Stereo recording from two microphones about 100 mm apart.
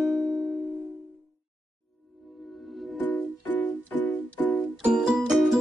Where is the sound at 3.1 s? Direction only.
15° left (ahead or behind).